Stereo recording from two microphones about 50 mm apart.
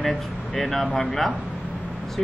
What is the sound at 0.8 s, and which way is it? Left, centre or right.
Speech, centre.